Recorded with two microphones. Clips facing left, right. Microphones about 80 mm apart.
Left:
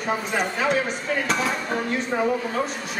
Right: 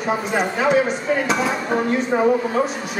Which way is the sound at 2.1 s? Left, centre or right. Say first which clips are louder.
Right 6 dB; centre.